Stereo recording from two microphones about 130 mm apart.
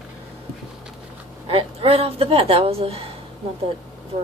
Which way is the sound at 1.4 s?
45° right (ahead or behind).